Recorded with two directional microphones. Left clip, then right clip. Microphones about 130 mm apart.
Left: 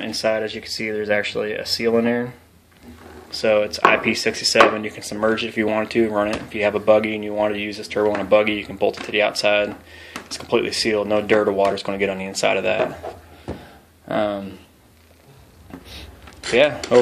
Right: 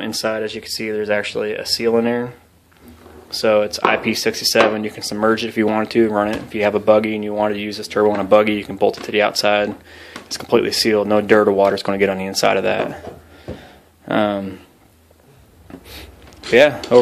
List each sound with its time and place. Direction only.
0.0 s speech: 30° right (ahead or behind)
0.3 s speech: 15° right (ahead or behind)
3.3 s speech: 30° right (ahead or behind)
8.1 s speech: 45° right (ahead or behind)
13.6 s a sound: 55° right (ahead or behind)
16.5 s speech: 45° right (ahead or behind)